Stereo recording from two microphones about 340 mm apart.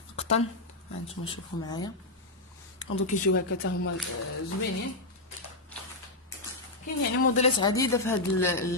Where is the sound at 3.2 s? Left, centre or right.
Left.